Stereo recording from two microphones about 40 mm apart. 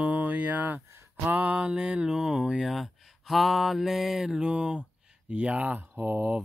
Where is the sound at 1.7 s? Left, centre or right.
Right.